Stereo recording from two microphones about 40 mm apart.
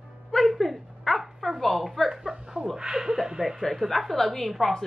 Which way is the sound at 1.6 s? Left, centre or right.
Centre.